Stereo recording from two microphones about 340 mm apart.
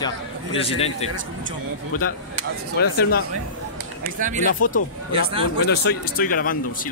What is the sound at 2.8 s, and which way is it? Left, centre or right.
Speech, left.